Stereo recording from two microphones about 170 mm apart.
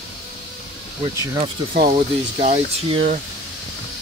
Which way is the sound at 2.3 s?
35° right (ahead or behind).